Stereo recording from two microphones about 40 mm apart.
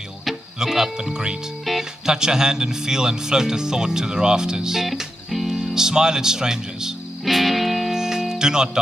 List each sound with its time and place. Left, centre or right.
0.6 s speech: centre
5.3 s music: centre
5.8 s speech: centre
7.3 s music: centre
7.9 s music: centre